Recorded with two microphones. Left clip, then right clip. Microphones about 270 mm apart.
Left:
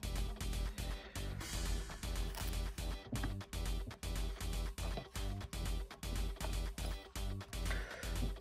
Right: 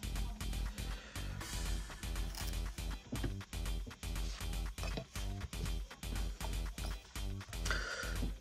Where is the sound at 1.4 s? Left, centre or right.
Centre.